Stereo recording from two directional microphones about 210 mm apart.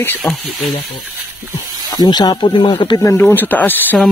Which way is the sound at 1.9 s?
20° left (ahead or behind).